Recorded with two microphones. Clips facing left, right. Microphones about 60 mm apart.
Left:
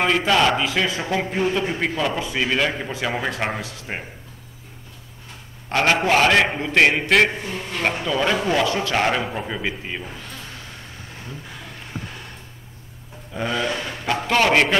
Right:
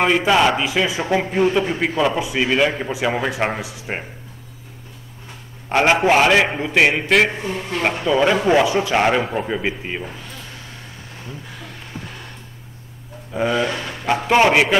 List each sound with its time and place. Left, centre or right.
0.0 s a man's voice: centre
1.0 s a man's voice: centre
5.7 s a man's voice: centre
7.3 s a man's voice: right
7.8 s a man's voice: centre
13.3 s a man's voice: centre